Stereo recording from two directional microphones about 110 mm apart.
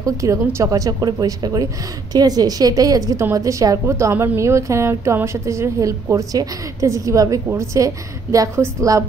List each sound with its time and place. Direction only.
0.0 s a woman's voice: 30° right (ahead or behind)